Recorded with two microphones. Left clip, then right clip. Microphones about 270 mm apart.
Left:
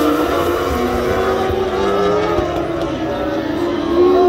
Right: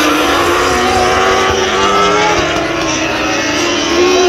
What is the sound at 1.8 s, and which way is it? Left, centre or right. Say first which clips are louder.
Vehicle: right 5 dB; left.